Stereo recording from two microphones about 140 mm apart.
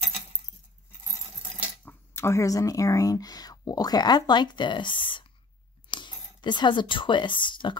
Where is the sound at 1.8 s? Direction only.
15° left (ahead or behind); by 7.8 s 35° left (ahead or behind).